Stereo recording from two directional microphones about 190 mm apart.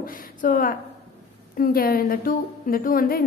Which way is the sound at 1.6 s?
50° left (ahead or behind).